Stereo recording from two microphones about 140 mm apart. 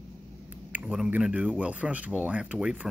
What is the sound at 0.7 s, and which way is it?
Speech, 10° right (ahead or behind).